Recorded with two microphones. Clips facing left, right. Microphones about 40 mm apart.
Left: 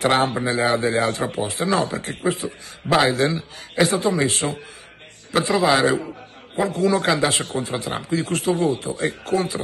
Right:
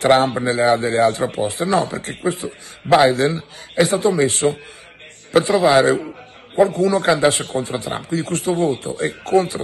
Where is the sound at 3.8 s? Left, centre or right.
Right.